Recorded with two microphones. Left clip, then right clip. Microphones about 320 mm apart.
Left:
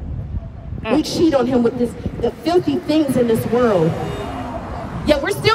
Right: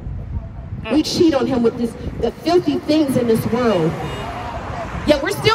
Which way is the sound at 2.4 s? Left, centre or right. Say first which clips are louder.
Right 1 dB; centre.